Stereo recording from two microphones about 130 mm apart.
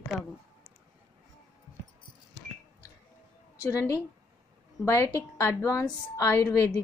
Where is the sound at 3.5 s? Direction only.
25° left (ahead or behind).